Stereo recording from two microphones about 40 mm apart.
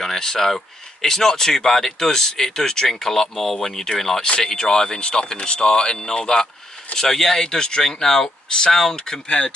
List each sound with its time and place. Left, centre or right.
0.0 s speech: centre